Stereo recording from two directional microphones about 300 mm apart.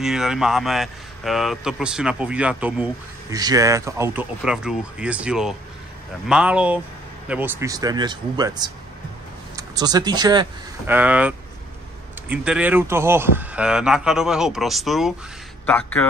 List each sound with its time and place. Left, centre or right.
0.0 s a man's voice: centre